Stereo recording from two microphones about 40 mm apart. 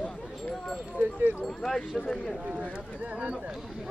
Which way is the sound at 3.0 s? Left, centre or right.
Right.